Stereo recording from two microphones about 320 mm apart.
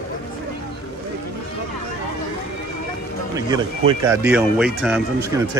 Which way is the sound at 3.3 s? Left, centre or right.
Centre.